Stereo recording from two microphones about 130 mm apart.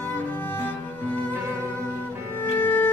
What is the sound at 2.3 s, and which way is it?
Music, 15° left (ahead or behind).